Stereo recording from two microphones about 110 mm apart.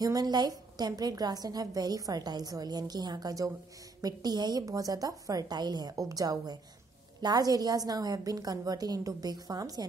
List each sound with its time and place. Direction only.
0.0 s a woman's voice: 35° right (ahead or behind)